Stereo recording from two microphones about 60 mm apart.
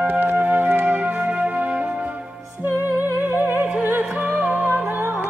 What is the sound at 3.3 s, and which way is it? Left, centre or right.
Opera, right.